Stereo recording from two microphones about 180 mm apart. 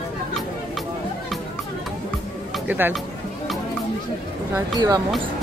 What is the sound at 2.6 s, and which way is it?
Speech, 10° right (ahead or behind).